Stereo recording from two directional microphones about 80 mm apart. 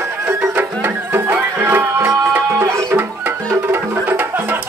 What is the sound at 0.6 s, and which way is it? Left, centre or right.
Music, right.